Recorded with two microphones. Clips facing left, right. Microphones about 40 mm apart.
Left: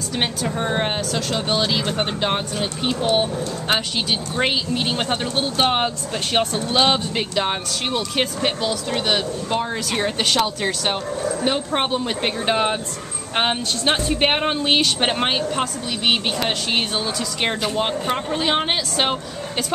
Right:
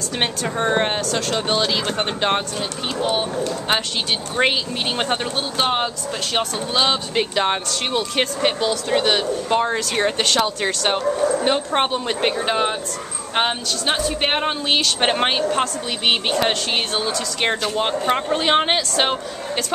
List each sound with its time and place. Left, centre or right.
0.6 s speech: centre
2.9 s speech: centre
4.4 s speech: centre
5.3 s speech: centre
7.2 s a woman's voice: centre
12.4 s speech: centre
15.0 s a woman's voice: centre
18.1 s speech: centre